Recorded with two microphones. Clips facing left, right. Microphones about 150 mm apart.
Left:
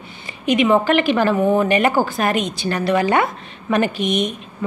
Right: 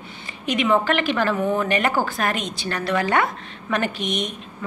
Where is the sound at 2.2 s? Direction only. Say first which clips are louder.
Left 5 dB; 10° left (ahead or behind).